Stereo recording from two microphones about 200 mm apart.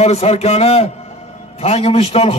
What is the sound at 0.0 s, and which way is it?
A man's voice, 30° left (ahead or behind).